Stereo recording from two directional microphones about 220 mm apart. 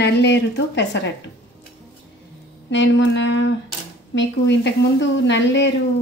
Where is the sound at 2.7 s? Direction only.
55° left (ahead or behind).